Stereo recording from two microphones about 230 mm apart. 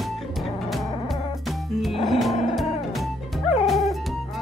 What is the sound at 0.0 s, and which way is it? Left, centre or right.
Music, centre.